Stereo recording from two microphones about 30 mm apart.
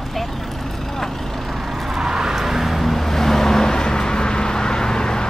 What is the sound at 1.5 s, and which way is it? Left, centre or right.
Vehicle, centre.